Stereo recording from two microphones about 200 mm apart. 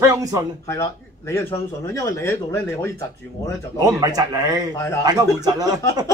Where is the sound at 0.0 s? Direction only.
15° right (ahead or behind).